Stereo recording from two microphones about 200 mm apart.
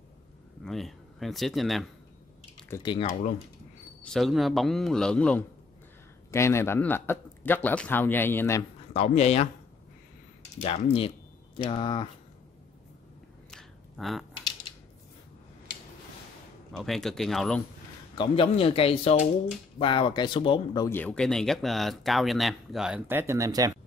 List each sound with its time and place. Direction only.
0.7 s speech: centre (ahead or behind)
2.7 s speech: 20° left (ahead or behind)
4.0 s a man's voice: centre (ahead or behind)
8.9 s speech: 35° left (ahead or behind)
10.6 s speech: 30° left (ahead or behind)
13.5 s a sound: centre (ahead or behind)
16.7 s speech: centre (ahead or behind)
18.1 s speech: 25° left (ahead or behind); by 23.7 s 15° right (ahead or behind)